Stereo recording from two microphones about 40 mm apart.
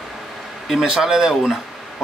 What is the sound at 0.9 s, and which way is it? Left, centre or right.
Speech, centre.